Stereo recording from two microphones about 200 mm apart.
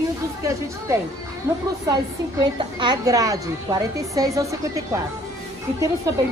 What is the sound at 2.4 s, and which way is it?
A woman's voice, 20° right (ahead or behind).